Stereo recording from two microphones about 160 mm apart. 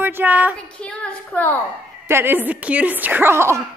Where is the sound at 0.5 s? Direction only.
5° left (ahead or behind).